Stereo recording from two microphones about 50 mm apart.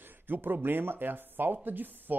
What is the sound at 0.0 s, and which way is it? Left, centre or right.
Speech, right.